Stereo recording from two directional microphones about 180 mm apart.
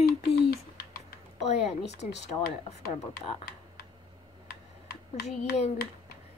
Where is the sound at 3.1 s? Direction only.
60° left (ahead or behind).